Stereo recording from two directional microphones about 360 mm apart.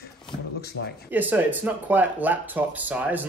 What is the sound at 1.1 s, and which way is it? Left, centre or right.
Speech, centre.